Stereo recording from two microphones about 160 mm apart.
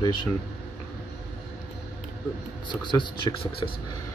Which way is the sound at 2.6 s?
30° left (ahead or behind).